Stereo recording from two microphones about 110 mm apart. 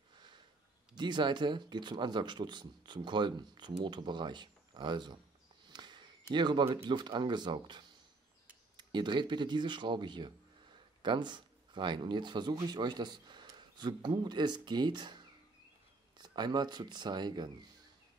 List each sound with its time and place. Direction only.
0.9 s speech: 45° right (ahead or behind)
5.7 s a sound: 40° right (ahead or behind)
6.3 s speech: 45° right (ahead or behind)